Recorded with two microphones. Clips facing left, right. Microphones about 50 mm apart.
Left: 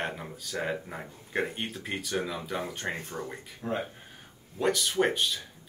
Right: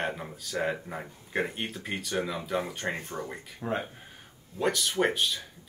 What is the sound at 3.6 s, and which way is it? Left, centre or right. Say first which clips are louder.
Speech: right 1 dB; right.